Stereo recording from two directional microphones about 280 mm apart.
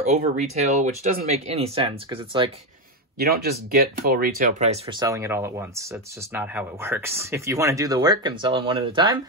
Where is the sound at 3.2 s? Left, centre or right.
Right.